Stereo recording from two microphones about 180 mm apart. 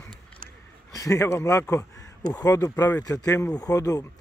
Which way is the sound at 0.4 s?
50° right (ahead or behind).